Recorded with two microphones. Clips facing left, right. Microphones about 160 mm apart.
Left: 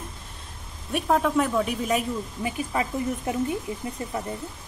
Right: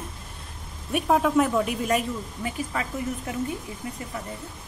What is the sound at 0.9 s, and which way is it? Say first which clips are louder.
Speech: right 1 dB; 5° right (ahead or behind).